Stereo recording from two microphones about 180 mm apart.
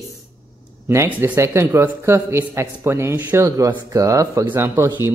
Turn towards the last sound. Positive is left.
turn(degrees=-10)  # may be behind; listen again after turning